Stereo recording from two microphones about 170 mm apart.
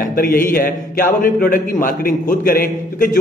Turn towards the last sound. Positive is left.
turn(degrees=55)  # may be behind; listen again after turning